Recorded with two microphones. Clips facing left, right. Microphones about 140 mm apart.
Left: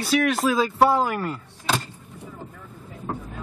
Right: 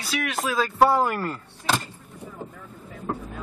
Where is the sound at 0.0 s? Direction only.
45° left (ahead or behind).